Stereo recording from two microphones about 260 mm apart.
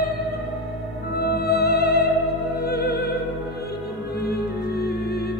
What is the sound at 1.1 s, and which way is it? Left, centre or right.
Music, left.